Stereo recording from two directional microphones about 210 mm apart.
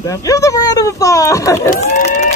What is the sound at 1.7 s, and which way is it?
Speech, 35° left (ahead or behind).